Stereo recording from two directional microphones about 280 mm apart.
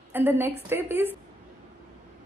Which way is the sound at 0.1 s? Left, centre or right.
Centre.